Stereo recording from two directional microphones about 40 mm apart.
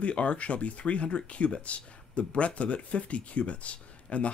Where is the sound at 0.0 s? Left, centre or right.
Left.